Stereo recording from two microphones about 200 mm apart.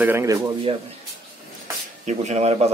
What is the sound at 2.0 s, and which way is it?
Speech, 35° right (ahead or behind).